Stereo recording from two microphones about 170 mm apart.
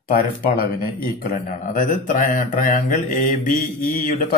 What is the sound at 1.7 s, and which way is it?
Mantra, 50° left (ahead or behind).